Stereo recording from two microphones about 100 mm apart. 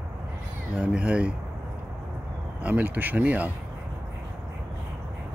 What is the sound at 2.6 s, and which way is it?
Speech, 15° right (ahead or behind).